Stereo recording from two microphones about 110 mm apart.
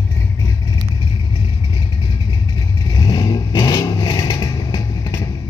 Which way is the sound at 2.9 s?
40° left (ahead or behind).